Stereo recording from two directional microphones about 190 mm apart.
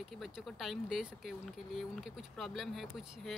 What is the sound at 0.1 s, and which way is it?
Speech, centre (ahead or behind).